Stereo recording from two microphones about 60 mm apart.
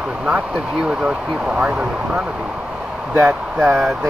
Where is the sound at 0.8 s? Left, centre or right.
Centre.